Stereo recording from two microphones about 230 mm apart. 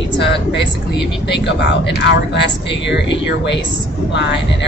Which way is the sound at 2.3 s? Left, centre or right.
Left.